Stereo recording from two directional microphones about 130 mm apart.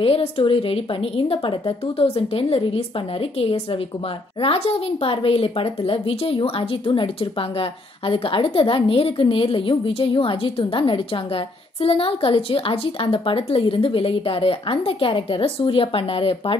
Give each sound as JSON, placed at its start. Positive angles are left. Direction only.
{"t": 0.0, "sound": "a woman's voice", "side_deg": 50}
{"t": 5.0, "sound": "a woman's voice", "side_deg": 50}
{"t": 8.1, "sound": "a woman's voice", "side_deg": 45}